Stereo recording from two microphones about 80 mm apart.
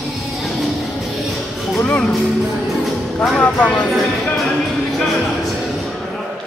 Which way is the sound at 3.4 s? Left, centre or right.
Centre.